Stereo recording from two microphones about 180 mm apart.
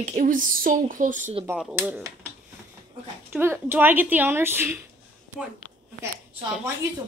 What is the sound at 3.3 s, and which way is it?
Speech, 10° right (ahead or behind).